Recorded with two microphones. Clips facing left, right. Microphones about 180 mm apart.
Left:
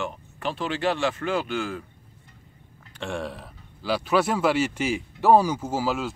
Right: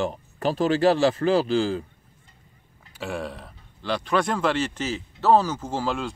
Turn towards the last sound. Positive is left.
turn(degrees=5)  # may be behind; listen again after turning